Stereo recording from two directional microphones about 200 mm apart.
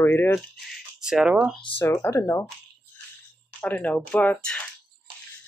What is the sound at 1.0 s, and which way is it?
Speech, 5° right (ahead or behind).